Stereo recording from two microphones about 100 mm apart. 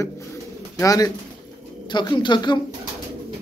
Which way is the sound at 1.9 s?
50° left (ahead or behind).